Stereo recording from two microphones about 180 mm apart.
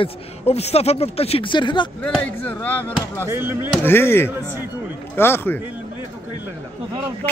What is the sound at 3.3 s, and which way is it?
Speech, 15° right (ahead or behind).